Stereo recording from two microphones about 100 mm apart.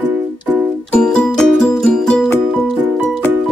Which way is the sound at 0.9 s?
10° left (ahead or behind).